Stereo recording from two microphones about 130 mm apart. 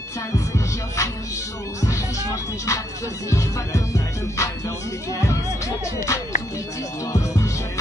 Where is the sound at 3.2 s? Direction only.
25° left (ahead or behind).